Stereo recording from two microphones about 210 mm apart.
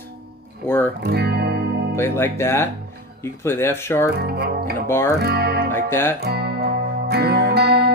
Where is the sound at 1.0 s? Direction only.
50° right (ahead or behind).